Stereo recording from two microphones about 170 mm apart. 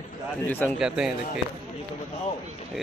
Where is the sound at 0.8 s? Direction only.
5° right (ahead or behind).